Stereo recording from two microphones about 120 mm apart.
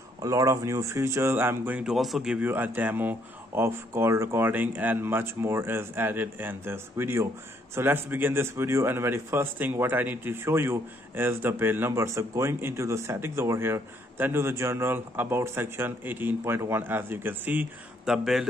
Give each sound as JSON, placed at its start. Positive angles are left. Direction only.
{"t": 0.2, "sound": "a man's voice", "side_deg": -30}